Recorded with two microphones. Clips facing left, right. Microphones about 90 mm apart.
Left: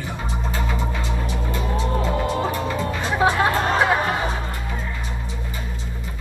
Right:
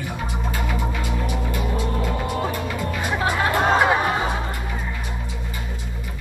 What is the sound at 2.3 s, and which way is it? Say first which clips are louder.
Music: left 2 dB; 25° left (ahead or behind).